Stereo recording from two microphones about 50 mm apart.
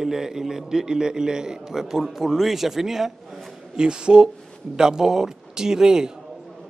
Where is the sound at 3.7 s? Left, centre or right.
Centre.